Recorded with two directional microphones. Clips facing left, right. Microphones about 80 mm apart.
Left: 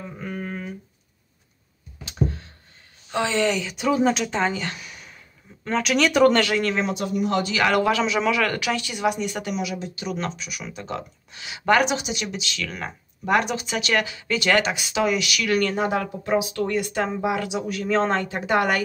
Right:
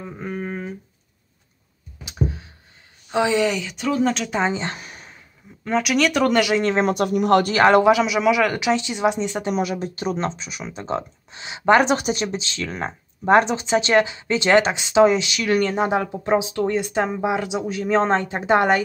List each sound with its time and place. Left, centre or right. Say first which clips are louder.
0.0 s a sound: right 3 dB; centre
2.0 s a sound: even; centre
3.1 s speech: right 4 dB; centre
3.4 s speech: even; centre
4.3 s speech: right 2 dB; right
5.6 s speech: right 2 dB; centre
6.4 s speech: right 3 dB; right
6.9 s speech: right 7 dB; right
7.5 s a man's voice: right 6 dB; right
7.8 s speech: right 5 dB; centre
9.5 s speech: right 5 dB; right
11.9 s speech: right 6 dB; right